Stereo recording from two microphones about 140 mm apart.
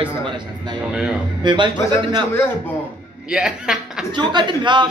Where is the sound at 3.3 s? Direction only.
5° right (ahead or behind).